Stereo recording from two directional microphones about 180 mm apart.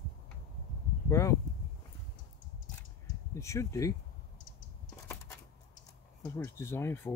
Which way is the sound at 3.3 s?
15° left (ahead or behind).